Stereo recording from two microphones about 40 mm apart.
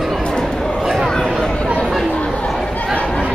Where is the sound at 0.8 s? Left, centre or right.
Centre.